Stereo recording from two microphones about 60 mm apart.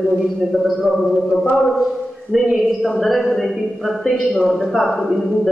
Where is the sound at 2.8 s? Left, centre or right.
Centre.